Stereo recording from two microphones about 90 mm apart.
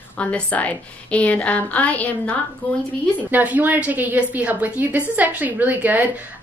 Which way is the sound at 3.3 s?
20° right (ahead or behind).